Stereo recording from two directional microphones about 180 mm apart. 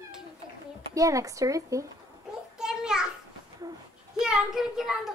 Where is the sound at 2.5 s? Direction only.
5° right (ahead or behind).